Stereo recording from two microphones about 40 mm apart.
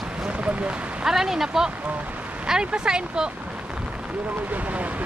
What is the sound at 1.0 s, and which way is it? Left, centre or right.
Speech, centre.